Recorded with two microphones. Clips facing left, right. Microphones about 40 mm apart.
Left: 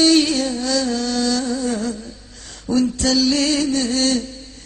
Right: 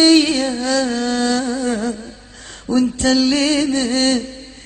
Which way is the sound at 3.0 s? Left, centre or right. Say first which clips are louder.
Right 2 dB; right.